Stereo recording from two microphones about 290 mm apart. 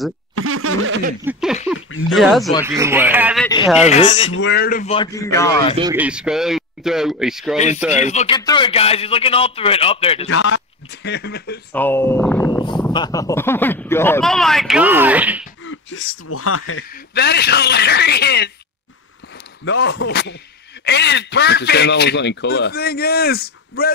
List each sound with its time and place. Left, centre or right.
0.4 s snicker: right
1.2 s a man's voice: centre
3.8 s a man's voice: left
4.4 s a man's voice: left; by 5.8 s centre
5.8 s speech: centre
7.5 s a man's voice: left
10.2 s a man's voice: left
11.7 s speech: centre
15.6 s speech: left
16.9 s a man's voice: left
19.6 s a man's voice: left